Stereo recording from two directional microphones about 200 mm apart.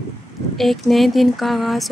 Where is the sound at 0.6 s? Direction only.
Centre (ahead or behind).